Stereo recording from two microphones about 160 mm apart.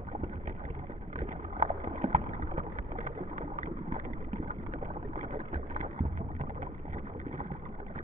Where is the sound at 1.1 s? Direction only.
50° right (ahead or behind).